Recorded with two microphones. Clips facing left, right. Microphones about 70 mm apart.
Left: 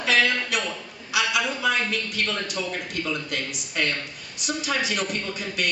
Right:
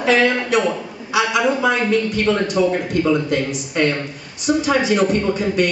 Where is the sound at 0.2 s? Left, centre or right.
Centre.